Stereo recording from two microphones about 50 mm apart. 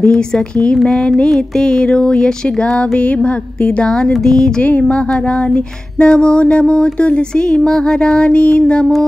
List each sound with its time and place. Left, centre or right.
0.8 s music: centre
1.3 s a sound: centre
4.6 s music: left